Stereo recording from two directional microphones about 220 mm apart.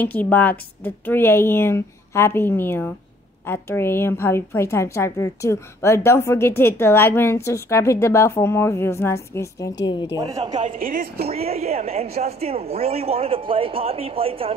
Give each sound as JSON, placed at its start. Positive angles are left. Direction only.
{"t": 0.0, "sound": "a woman's voice", "side_deg": 10}
{"t": 10.1, "sound": "a woman's voice", "side_deg": -20}
{"t": 10.6, "sound": "speech", "side_deg": -40}
{"t": 11.2, "sound": "a woman's voice", "side_deg": -30}